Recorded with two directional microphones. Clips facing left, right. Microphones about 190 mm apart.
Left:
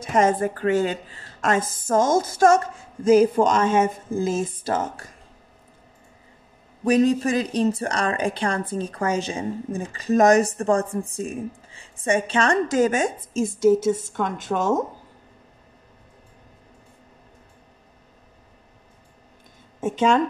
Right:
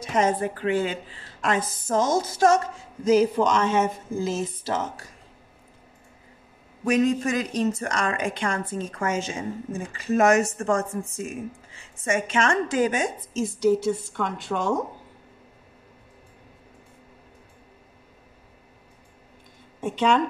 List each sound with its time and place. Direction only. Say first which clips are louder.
0.0 s a woman's voice: left 3 dB; 50° left (ahead or behind)
6.8 s a woman's voice: left 3 dB; 35° left (ahead or behind)
19.8 s a woman's voice: left 2 dB; 45° left (ahead or behind)